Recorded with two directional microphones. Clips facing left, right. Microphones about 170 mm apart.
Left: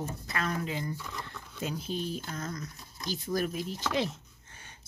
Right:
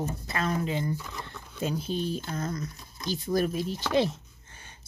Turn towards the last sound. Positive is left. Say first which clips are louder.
# right 1 dB
turn(degrees=-30)  # may be behind; listen again after turning